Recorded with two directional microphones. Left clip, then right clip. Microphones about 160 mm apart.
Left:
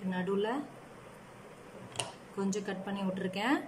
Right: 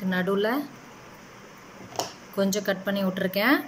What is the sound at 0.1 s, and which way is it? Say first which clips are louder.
Speech: right 8 dB; 10° left (ahead or behind).